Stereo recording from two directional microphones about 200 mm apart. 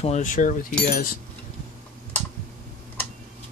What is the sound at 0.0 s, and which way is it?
Cutlery, 35° left (ahead or behind).